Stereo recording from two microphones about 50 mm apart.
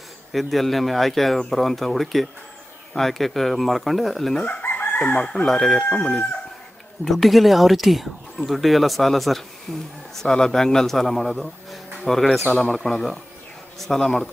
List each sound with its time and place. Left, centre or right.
0.3 s speech: centre
4.5 s chicken: left
5.1 s chicken: centre
5.8 s chicken: left
7.1 s speech: centre
12.6 s chicken: centre